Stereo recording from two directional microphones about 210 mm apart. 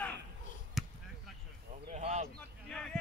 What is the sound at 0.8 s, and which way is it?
Basketball bounce, centre (ahead or behind).